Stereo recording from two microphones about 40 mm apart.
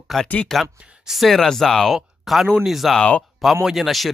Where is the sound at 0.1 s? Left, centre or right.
Centre.